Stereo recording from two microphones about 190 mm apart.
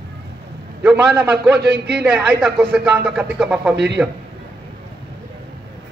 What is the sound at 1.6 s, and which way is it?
Speech, 60° right (ahead or behind).